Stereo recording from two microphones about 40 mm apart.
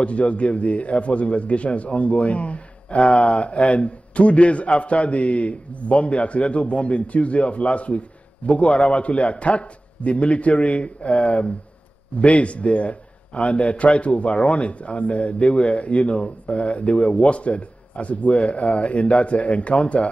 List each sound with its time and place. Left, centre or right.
0.0 s a man's voice: left